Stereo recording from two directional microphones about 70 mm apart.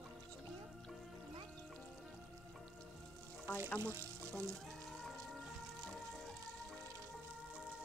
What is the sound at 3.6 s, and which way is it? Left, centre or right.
Speech, left.